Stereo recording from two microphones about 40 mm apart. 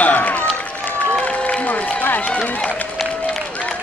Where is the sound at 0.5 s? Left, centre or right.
Left.